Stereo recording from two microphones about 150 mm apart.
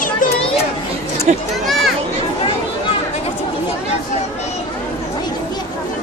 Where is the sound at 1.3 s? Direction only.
55° right (ahead or behind).